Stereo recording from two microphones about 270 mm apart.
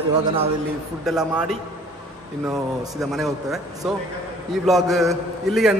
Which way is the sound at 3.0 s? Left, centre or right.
Centre.